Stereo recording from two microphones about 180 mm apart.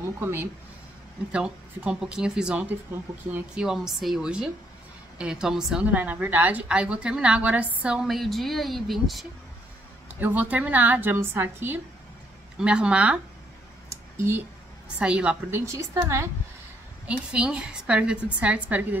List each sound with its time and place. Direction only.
0.2 s a woman's voice: 10° right (ahead or behind)
13.8 s a sound: 15° right (ahead or behind)
15.0 s a woman's voice: 5° right (ahead or behind)